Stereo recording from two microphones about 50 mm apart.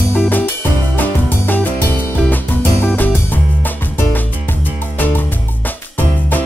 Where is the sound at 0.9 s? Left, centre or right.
Left.